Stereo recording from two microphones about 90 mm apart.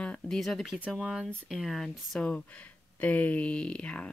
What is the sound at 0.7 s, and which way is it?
Speech, 15° right (ahead or behind).